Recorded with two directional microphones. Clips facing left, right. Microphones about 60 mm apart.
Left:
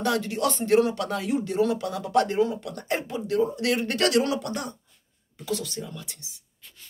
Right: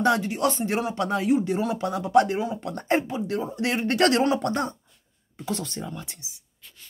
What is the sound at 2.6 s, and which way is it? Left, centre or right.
Speech, right.